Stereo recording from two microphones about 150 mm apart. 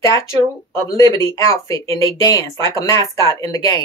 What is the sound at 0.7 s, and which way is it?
Speech, 25° left (ahead or behind).